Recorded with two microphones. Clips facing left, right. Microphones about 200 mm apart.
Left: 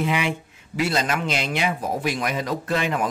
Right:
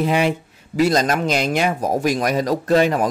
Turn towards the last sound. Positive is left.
turn(degrees=-40)  # may be behind; listen again after turning